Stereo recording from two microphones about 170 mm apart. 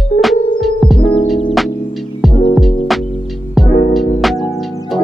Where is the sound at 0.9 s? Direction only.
30° left (ahead or behind).